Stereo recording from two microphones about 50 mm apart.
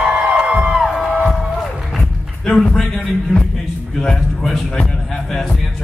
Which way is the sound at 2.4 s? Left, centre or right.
Centre.